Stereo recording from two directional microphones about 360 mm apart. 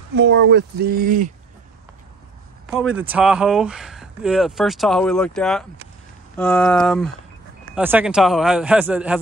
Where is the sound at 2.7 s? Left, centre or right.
Centre.